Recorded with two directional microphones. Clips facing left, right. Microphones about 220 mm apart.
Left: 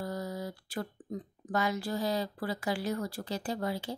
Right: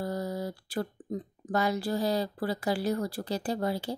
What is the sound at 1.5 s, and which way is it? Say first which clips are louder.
Speech: right 3 dB; 35° right (ahead or behind).